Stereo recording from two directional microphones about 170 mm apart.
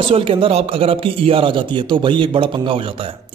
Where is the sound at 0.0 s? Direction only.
35° right (ahead or behind).